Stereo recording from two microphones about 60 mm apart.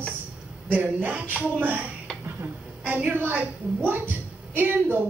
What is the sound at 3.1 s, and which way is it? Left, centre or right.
A woman's voice, right.